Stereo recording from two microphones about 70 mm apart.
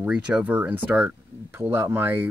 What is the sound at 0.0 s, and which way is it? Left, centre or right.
Speech, centre.